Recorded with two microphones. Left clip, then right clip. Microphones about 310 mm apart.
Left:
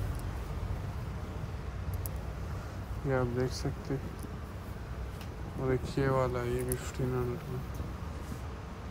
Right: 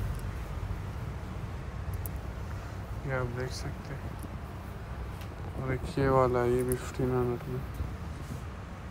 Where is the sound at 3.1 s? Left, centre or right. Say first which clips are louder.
Left 3 dB; centre.